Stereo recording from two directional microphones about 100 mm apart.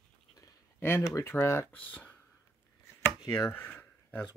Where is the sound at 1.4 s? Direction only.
25° left (ahead or behind).